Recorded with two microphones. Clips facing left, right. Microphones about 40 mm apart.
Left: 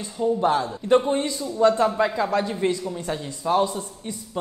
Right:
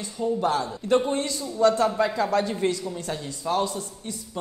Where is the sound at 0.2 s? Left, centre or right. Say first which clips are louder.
Left 3 dB; centre.